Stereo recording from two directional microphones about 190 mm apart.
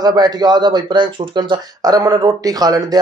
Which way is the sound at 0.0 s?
20° right (ahead or behind).